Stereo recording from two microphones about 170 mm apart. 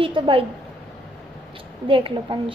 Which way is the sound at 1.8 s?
30° right (ahead or behind).